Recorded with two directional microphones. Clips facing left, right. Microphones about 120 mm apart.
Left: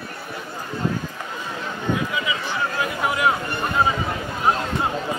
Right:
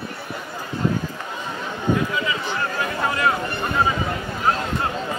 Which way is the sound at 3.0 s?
15° left (ahead or behind).